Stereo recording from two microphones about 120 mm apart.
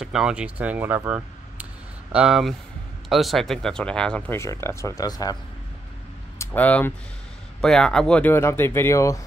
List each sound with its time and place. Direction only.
0.0 s speech: 5° right (ahead or behind)
4.3 s speech: 20° left (ahead or behind)
6.3 s a sound: 25° left (ahead or behind)
6.6 s speech: 15° left (ahead or behind)